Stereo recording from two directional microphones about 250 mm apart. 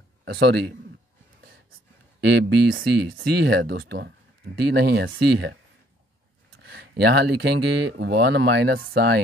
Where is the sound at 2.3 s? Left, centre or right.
Right.